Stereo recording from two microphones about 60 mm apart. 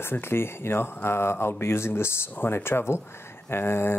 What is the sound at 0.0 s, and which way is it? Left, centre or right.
Speech, left.